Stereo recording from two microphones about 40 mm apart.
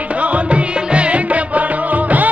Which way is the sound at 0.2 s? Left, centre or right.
Right.